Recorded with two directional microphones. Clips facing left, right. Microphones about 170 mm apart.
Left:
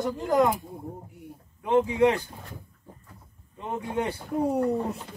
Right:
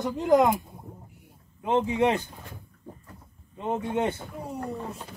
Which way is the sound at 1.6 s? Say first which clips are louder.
Left 2 dB; 25° right (ahead or behind).